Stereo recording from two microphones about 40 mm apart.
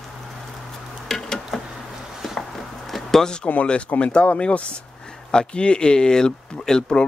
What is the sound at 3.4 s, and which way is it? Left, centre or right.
Speech, left.